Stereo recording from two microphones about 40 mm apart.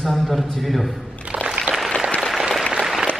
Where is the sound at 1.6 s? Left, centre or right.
Centre.